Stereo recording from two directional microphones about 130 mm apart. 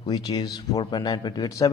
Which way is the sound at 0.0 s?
30° left (ahead or behind).